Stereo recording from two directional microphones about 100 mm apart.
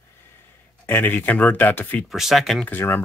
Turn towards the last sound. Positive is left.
turn(degrees=20)  # may be behind; listen again after turning